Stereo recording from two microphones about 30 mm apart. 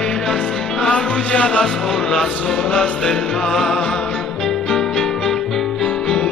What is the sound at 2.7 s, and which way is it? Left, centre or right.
Music, left.